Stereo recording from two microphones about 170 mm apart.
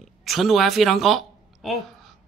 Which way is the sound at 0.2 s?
Centre (ahead or behind).